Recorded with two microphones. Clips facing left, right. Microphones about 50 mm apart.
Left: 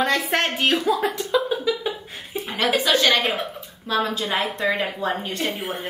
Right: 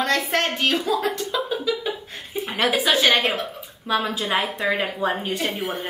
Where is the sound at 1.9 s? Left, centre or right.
Centre.